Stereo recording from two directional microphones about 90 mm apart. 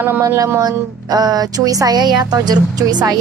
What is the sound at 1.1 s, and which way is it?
Speech, 45° right (ahead or behind).